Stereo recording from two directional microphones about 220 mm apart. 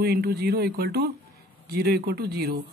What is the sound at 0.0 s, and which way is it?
Speech, 45° right (ahead or behind).